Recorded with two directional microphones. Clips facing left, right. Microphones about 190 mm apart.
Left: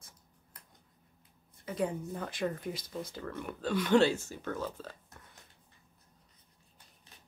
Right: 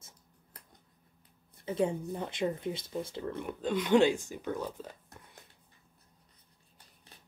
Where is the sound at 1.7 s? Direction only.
25° right (ahead or behind).